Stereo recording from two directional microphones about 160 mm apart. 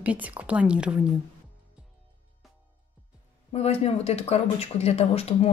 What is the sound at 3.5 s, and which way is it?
Speech, 40° left (ahead or behind).